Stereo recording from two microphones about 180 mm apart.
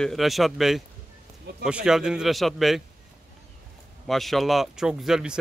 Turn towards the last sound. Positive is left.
turn(degrees=-5)  # may be behind; listen again after turning